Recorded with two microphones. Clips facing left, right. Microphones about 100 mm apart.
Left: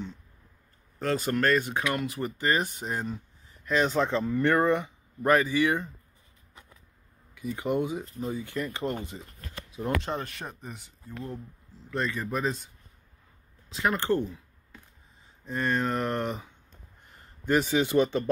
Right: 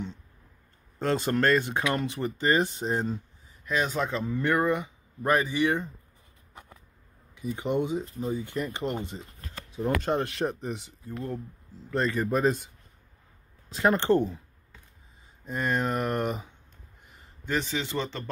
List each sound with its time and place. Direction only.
0.9 s speech: 25° right (ahead or behind)
3.6 s speech: 5° right (ahead or behind)
6.5 s a sound: 50° right (ahead or behind)
7.3 s speech: 25° right (ahead or behind)
10.1 s speech: 75° right (ahead or behind)
11.9 s speech: 35° right (ahead or behind)
13.7 s speech: 40° right (ahead or behind)
13.9 s speech: 20° right (ahead or behind)
15.4 s speech: 10° right (ahead or behind)
17.5 s speech: 10° left (ahead or behind)